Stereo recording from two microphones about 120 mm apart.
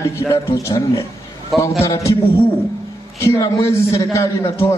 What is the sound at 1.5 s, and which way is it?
Speech, centre (ahead or behind).